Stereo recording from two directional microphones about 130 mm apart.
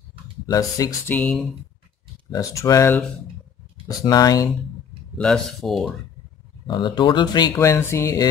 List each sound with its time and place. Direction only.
0.5 s speech: 25° left (ahead or behind)
1.1 s speech: 5° left (ahead or behind)
2.3 s speech: 25° left (ahead or behind)
5.1 s speech: 5° left (ahead or behind)
6.7 s speech: 35° left (ahead or behind)
7.6 s speech: 20° left (ahead or behind)